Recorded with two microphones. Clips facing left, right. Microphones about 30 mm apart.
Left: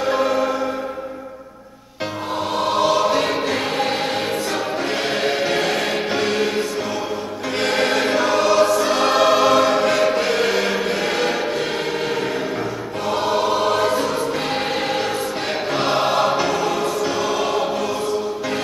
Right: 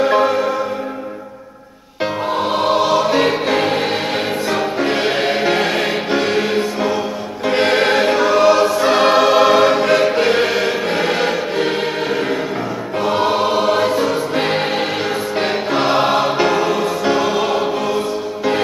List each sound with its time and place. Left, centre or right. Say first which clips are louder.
2.0 s music: right 6 dB; right
2.9 s choir: right 3 dB; centre
12.9 s choir: right 4 dB; right
14.3 s music: right 4 dB; right